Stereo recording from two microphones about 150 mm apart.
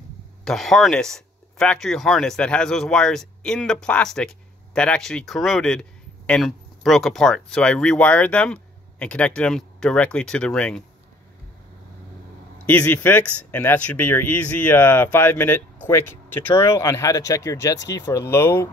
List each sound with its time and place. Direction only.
0.5 s speech: centre (ahead or behind)
12.6 s speech: 10° left (ahead or behind)